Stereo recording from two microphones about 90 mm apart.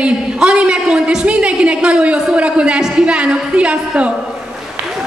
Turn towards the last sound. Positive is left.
turn(degrees=-15)  # may be behind; listen again after turning